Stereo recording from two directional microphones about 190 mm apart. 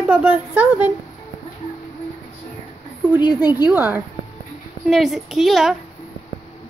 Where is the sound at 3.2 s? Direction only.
20° left (ahead or behind).